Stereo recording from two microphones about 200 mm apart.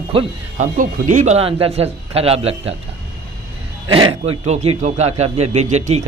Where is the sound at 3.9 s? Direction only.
25° right (ahead or behind).